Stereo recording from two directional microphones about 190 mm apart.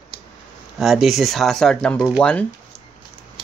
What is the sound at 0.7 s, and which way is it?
Speech, centre (ahead or behind).